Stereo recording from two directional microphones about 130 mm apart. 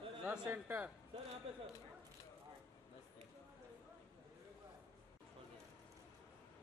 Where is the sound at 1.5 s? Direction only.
50° right (ahead or behind).